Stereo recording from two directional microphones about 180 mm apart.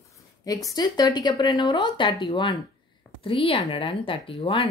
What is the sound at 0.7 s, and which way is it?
Speech, 20° left (ahead or behind).